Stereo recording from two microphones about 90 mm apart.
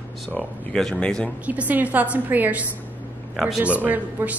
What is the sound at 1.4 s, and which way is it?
A woman's voice, 15° right (ahead or behind).